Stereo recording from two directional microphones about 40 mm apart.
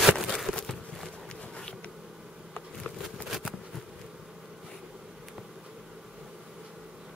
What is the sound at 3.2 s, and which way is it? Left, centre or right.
Bee, centre.